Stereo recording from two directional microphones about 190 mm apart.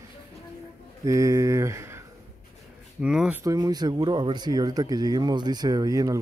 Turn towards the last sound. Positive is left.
turn(degrees=-20)  # may be behind; listen again after turning